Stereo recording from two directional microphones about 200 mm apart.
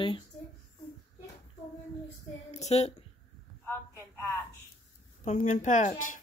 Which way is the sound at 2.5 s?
35° left (ahead or behind).